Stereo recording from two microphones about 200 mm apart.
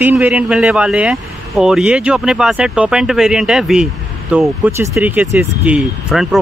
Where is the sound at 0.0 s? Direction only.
10° right (ahead or behind).